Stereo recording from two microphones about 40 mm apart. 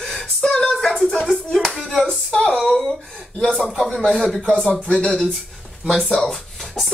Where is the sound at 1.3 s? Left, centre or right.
Centre.